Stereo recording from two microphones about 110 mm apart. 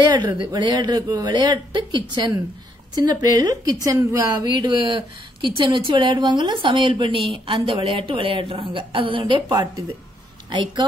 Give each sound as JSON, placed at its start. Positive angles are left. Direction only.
{"t": 0.1, "sound": "a woman's voice", "side_deg": -40}
{"t": 4.5, "sound": "a woman's voice", "side_deg": -40}
{"t": 10.5, "sound": "a woman's voice", "side_deg": -45}